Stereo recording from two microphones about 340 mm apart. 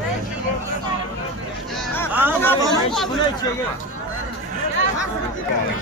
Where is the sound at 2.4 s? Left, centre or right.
Centre.